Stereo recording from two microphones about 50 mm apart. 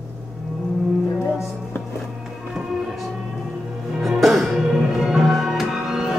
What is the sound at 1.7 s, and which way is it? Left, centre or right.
Music, left.